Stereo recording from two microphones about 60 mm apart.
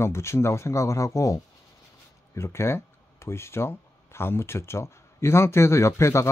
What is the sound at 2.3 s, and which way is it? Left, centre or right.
Speech, left.